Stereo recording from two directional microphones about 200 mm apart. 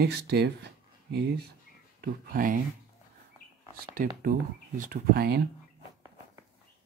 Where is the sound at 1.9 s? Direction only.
45° right (ahead or behind).